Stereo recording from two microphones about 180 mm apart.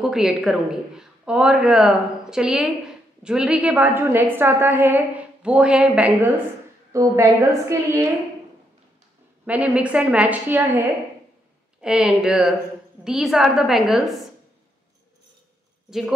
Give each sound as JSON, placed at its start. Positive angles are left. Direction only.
{"t": 0.0, "sound": "a woman's voice", "side_deg": 0}
{"t": 9.5, "sound": "a woman's voice", "side_deg": -5}
{"t": 11.8, "sound": "a woman's voice", "side_deg": -5}
{"t": 15.9, "sound": "a woman's voice", "side_deg": 0}